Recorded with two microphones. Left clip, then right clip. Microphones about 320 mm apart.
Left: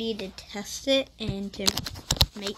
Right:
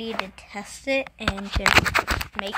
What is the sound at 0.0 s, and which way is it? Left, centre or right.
Speech, centre.